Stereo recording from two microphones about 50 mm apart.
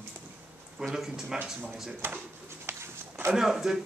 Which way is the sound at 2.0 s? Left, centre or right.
Right.